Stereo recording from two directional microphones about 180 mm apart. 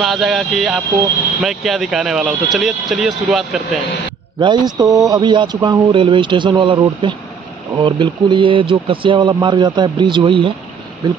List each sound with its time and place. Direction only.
0.0 s speech: centre (ahead or behind)
4.4 s speech: 25° right (ahead or behind)